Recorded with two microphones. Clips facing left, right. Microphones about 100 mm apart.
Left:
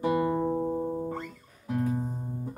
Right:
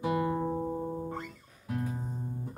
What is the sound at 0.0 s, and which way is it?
Music, centre (ahead or behind).